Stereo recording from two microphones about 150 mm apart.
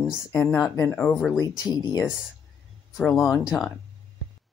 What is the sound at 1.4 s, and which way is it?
Speech, 25° left (ahead or behind).